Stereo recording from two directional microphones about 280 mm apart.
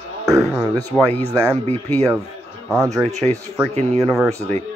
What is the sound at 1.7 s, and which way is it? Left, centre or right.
Speech, centre.